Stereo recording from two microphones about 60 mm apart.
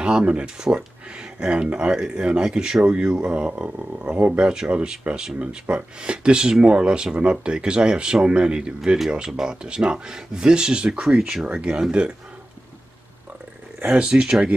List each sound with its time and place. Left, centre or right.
0.0 s speech: centre
13.8 s speech: centre